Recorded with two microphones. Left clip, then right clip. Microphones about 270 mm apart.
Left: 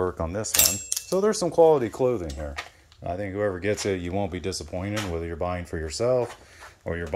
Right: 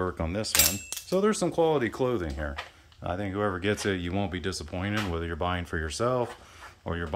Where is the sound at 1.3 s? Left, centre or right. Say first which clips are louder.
Left 2 dB; centre.